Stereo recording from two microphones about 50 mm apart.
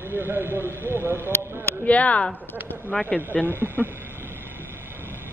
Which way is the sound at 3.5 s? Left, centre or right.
Right.